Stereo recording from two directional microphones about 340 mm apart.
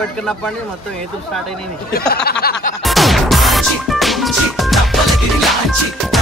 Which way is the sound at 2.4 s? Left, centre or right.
Left.